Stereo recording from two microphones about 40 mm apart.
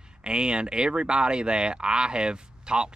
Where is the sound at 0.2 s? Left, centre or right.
Right.